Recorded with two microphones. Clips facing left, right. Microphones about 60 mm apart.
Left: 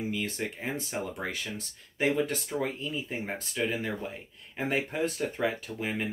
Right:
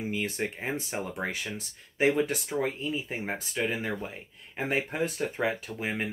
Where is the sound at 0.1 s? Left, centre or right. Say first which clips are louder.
Right 2 dB; right.